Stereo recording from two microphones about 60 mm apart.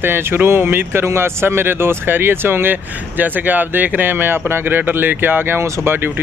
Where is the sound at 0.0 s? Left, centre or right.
Right.